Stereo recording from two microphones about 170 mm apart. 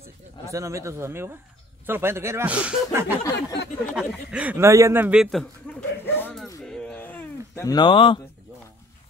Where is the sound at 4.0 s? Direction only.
10° right (ahead or behind).